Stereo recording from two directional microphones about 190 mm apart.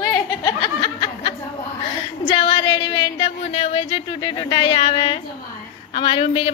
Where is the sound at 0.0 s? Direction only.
20° left (ahead or behind).